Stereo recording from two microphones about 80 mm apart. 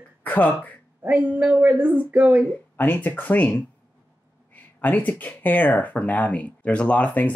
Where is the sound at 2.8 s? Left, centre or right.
Left.